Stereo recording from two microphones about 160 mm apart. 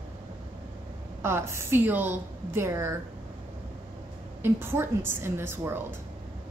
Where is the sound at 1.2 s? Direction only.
15° right (ahead or behind).